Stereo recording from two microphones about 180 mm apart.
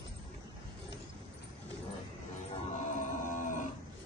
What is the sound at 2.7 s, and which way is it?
Music, 45° left (ahead or behind).